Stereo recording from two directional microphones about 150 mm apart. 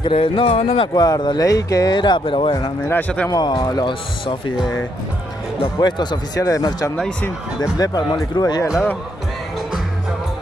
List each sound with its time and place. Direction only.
0.0 s speech: 40° left (ahead or behind)
2.9 s speech: 10° left (ahead or behind)
3.3 s speech: 25° left (ahead or behind)
5.8 s speech: 30° left (ahead or behind)
7.0 s speech: 5° left (ahead or behind)
7.2 s speech: 20° left (ahead or behind)